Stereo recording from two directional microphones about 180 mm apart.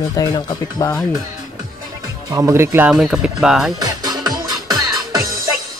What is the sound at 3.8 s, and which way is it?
Music, 20° right (ahead or behind).